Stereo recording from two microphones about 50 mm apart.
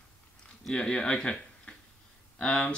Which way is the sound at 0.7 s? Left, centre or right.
Centre.